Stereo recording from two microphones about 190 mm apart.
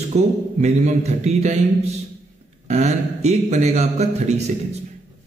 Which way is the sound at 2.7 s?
35° right (ahead or behind).